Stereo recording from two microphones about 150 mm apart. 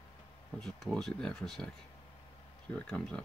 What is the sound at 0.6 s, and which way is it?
Speech, centre (ahead or behind).